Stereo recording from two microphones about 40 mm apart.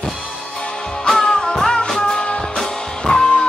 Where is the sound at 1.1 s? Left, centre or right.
Centre.